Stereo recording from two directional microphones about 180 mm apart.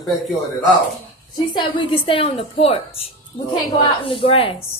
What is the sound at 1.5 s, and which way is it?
A woman's voice, 30° left (ahead or behind).